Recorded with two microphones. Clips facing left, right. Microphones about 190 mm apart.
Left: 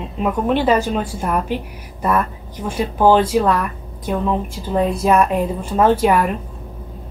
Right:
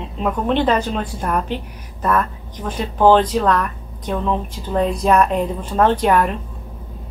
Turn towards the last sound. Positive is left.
turn(degrees=5)  # may be behind; listen again after turning